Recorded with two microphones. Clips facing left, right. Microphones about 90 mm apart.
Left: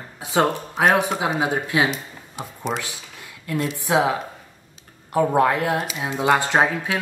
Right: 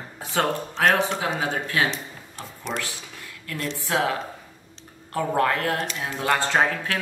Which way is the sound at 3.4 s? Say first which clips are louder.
Left 6 dB; 20° left (ahead or behind).